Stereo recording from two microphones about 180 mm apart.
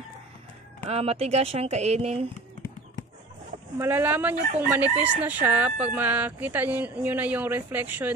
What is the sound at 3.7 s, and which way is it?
Speech, 10° right (ahead or behind).